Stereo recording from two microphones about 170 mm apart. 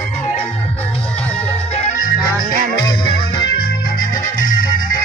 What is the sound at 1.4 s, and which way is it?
Music, 35° left (ahead or behind).